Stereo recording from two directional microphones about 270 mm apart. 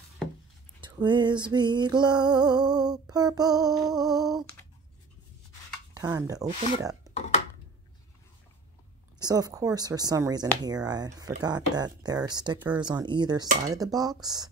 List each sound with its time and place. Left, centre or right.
0.7 s speech: centre
5.9 s speech: centre
7.2 s a sound: left
9.2 s speech: centre